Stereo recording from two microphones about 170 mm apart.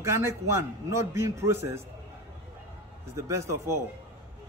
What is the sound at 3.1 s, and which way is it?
Speech, 15° right (ahead or behind).